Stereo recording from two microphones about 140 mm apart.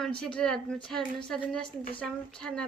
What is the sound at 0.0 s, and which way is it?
Speech, 5° left (ahead or behind).